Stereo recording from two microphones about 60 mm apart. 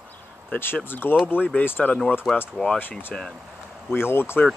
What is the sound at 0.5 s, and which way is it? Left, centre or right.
Speech, left.